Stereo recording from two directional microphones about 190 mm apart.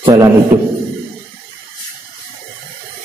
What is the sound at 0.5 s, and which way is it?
Speech, 40° right (ahead or behind).